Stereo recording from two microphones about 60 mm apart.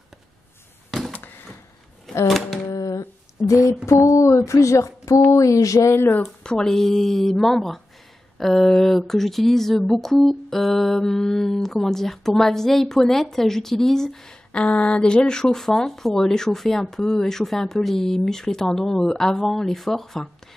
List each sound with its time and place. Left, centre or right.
2.2 s speech: centre
3.4 s a sound: left
3.8 s speech: left
6.2 s speech: centre
14.5 s speech: centre